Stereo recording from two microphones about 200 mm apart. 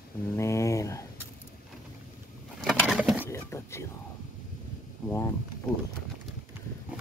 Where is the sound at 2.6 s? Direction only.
Centre (ahead or behind).